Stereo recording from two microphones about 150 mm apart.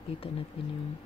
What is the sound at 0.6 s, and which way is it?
Speech, 40° left (ahead or behind).